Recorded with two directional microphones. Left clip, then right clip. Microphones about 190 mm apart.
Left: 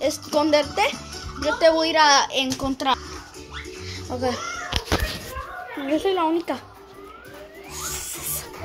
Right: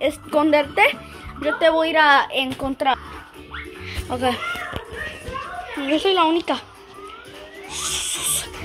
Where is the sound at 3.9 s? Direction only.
10° right (ahead or behind).